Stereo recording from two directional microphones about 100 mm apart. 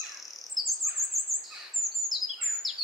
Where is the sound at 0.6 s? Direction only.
45° right (ahead or behind).